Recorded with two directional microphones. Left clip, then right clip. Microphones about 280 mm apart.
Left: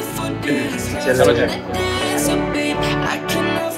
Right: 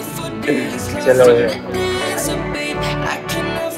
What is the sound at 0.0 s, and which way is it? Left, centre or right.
Music, centre.